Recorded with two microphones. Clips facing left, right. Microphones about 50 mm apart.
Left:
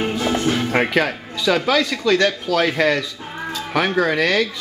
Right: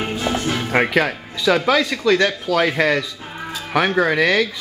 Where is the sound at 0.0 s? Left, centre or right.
Centre.